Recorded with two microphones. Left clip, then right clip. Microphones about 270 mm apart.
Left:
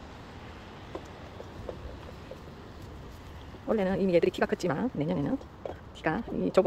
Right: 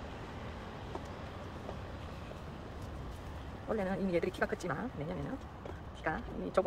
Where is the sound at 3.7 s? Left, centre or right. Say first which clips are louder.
Left 8 dB; left.